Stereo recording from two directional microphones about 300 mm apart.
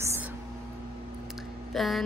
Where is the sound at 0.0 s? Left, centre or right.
Centre.